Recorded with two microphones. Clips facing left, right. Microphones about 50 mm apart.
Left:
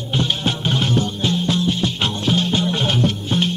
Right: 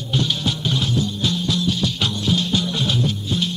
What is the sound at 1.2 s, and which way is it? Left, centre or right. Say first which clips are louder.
Music: left 2 dB; left.